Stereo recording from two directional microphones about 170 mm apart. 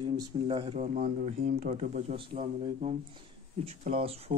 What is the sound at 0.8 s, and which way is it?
Speech, 50° right (ahead or behind).